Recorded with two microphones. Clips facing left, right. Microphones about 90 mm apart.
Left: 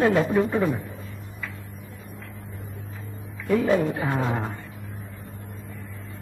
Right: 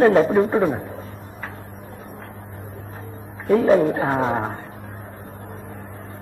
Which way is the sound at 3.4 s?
40° right (ahead or behind).